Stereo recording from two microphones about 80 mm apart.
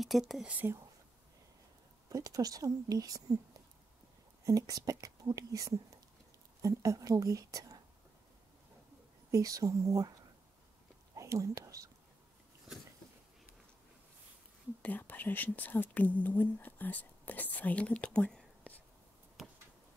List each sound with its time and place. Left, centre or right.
0.0 s speech: centre
0.5 s speech: right
2.0 s speech: right
4.5 s speech: right
9.3 s speech: right
11.1 s speech: right
14.8 s speech: left